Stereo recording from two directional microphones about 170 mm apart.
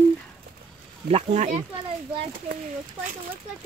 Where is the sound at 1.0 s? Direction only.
40° right (ahead or behind).